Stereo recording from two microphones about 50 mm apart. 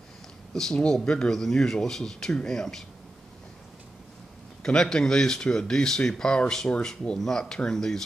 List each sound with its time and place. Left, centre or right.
0.7 s speech: centre
4.6 s speech: centre